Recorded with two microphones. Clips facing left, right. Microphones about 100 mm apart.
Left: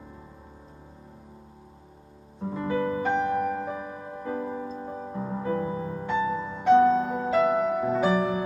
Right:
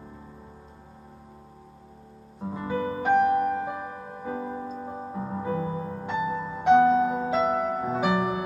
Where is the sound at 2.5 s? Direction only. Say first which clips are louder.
Left 2 dB; 15° right (ahead or behind).